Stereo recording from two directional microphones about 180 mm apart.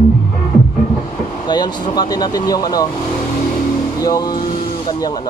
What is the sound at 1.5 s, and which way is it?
Speech, 25° left (ahead or behind).